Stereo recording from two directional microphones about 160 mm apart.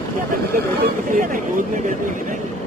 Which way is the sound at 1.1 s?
55° right (ahead or behind).